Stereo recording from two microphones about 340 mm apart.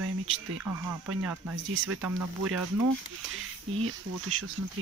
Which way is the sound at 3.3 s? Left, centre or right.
Right.